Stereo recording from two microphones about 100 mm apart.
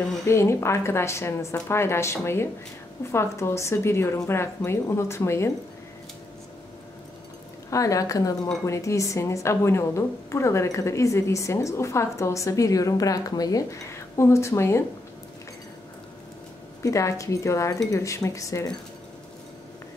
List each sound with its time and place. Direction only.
0.3 s a woman's voice: 25° left (ahead or behind)
7.7 s a woman's voice: 35° left (ahead or behind)
16.8 s speech: 30° left (ahead or behind)